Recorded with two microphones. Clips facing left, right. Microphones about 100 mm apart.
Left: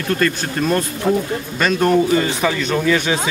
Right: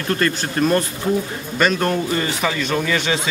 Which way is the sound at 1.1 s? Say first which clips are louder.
Left 3 dB; 70° left (ahead or behind).